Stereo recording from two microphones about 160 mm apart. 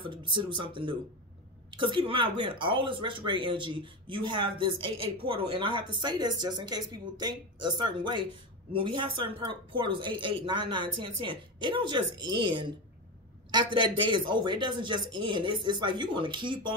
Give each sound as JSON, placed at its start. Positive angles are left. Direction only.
{"t": 0.1, "sound": "speech", "side_deg": -30}